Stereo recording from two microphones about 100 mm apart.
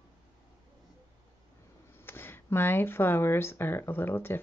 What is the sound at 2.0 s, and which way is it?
Speech, 20° left (ahead or behind).